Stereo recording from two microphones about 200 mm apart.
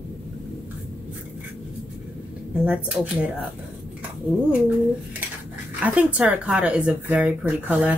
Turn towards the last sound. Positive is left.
turn(degrees=-5)  # may be behind; listen again after turning